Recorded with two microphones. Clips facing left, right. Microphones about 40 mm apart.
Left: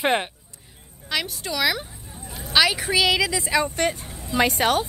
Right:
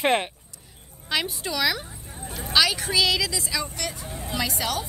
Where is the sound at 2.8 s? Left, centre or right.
Left.